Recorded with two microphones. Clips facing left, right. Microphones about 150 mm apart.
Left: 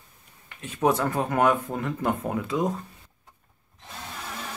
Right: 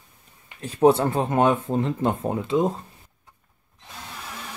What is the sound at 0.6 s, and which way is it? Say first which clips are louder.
Speech: right 6 dB; 35° right (ahead or behind).